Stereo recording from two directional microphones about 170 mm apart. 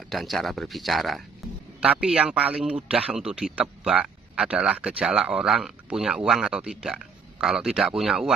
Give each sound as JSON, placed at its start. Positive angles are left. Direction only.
{"t": 0.1, "sound": "a man's voice", "side_deg": 0}